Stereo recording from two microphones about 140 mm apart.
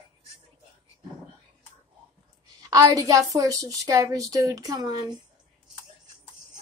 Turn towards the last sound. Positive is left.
turn(degrees=-25)  # may be behind; listen again after turning